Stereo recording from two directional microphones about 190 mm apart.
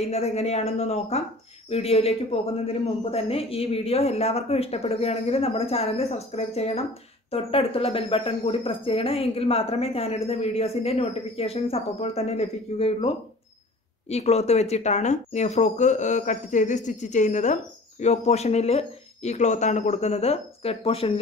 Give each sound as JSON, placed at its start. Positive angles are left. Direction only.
{"t": 0.0, "sound": "a man's voice", "side_deg": 35}